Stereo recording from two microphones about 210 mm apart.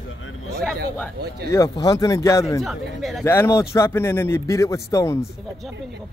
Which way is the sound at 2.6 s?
Centre (ahead or behind).